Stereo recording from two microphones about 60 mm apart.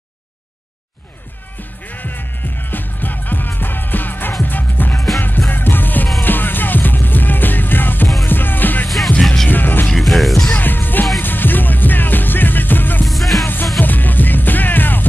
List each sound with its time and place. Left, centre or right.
1.9 s music: left
8.8 s music: centre
9.5 s music: left
9.9 s music: centre
10.5 s music: left
13.0 s music: centre
13.7 s music: left